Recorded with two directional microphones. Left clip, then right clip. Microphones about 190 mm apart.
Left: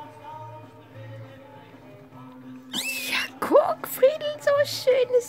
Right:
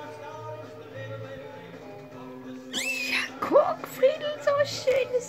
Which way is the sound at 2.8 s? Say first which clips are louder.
Even; 55° left (ahead or behind).